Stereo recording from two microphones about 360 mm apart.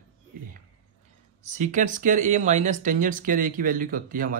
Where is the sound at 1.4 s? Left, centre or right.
Centre.